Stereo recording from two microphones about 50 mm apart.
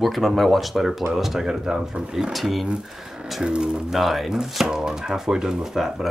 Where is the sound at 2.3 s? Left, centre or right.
Centre.